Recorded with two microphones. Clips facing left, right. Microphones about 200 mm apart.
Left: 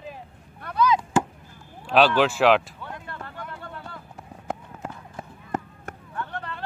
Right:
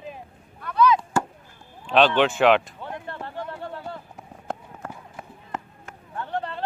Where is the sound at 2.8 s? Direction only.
20° right (ahead or behind).